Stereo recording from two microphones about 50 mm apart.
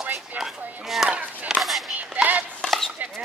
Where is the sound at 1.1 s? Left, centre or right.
Right.